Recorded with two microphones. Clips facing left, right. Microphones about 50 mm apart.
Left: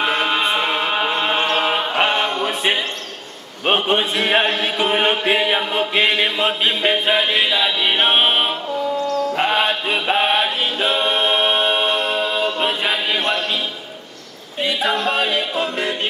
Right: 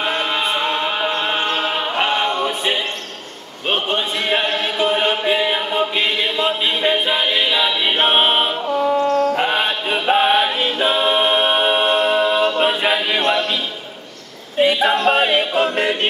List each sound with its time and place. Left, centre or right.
0.0 s music: centre
1.6 s chant: centre
6.8 s music: left
8.0 s music: centre
8.9 s a sound: right
9.4 s chant: centre
10.8 s a capella: centre
11.8 s music: right
12.2 s a capella: right
12.6 s chant: centre
14.6 s a sound: right
15.1 s a capella: right
15.5 s music: right